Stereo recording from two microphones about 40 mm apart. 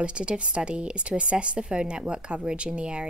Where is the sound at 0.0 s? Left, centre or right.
Right.